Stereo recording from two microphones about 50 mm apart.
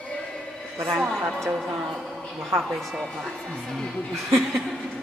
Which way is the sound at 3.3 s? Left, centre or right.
Centre.